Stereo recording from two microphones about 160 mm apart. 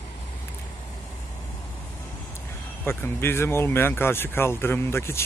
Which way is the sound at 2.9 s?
15° left (ahead or behind).